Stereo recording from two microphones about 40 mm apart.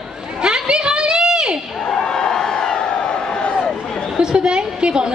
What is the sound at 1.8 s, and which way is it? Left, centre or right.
Crowd, left.